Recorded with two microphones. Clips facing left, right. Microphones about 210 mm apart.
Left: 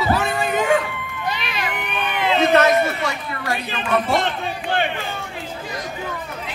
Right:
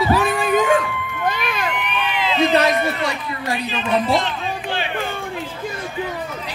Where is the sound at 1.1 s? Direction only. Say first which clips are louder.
Right 4 dB; 50° right (ahead or behind).